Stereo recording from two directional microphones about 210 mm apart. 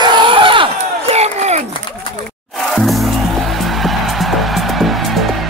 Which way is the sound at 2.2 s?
Centre (ahead or behind).